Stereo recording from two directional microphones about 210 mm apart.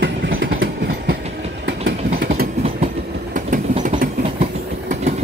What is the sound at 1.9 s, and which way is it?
Vehicle, 35° right (ahead or behind).